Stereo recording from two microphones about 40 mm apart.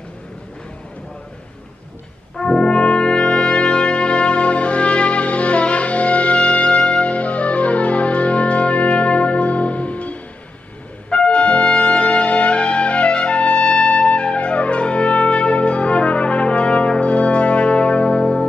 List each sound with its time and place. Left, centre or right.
2.3 s brass instrument: left